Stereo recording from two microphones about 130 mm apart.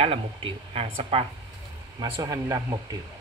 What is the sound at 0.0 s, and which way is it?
Speech, 45° right (ahead or behind).